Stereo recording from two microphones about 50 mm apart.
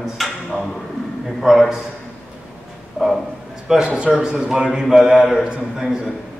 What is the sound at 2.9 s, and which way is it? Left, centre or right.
Speech, centre.